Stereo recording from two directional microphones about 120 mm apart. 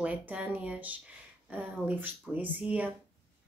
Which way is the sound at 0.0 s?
10° right (ahead or behind).